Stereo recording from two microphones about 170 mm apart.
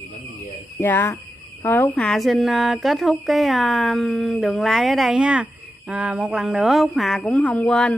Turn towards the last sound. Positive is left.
turn(degrees=5)  # may be behind; listen again after turning